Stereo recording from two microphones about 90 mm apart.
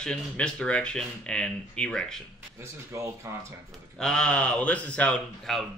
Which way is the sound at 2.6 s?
35° right (ahead or behind).